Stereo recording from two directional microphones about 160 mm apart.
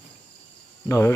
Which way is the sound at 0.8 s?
20° left (ahead or behind).